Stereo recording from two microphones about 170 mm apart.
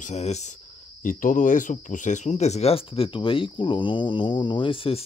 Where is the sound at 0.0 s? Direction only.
40° left (ahead or behind).